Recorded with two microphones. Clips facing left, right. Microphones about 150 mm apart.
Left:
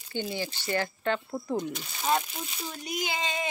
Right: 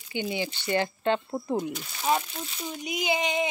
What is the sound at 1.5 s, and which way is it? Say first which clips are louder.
Speech: right 2 dB; 5° right (ahead or behind).